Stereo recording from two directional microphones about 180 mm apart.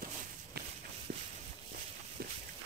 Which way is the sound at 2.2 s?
60° right (ahead or behind).